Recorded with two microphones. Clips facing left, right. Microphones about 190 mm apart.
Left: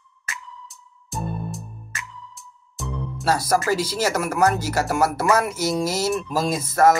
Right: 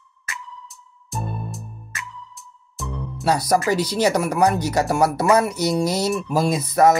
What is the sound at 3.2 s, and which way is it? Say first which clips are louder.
Speech: right 2 dB; 15° right (ahead or behind).